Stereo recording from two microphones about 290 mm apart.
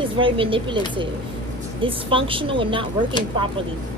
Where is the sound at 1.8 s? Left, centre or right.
Centre.